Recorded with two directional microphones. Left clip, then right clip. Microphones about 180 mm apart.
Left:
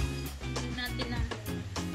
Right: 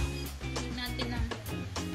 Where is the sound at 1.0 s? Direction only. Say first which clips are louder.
Even; centre (ahead or behind).